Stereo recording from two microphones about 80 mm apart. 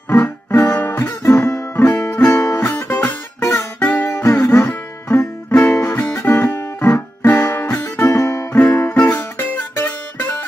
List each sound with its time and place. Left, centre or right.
0.1 s music: left
4.1 s music: left
8.5 s music: left